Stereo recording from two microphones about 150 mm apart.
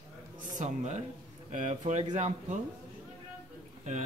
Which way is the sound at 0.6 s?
50° right (ahead or behind).